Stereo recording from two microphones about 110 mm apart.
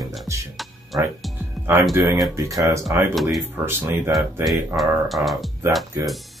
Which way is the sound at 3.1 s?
Centre (ahead or behind).